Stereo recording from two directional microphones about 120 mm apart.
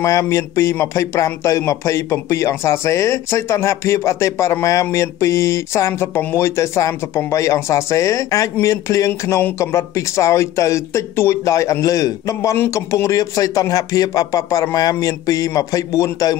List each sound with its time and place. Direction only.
0.0 s a man's voice: 25° left (ahead or behind)